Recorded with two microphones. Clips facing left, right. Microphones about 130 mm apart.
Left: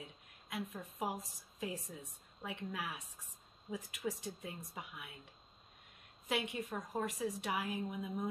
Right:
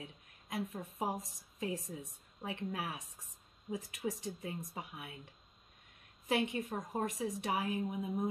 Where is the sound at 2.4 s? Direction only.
35° right (ahead or behind).